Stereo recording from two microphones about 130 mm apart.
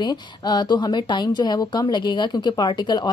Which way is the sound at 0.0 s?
35° left (ahead or behind).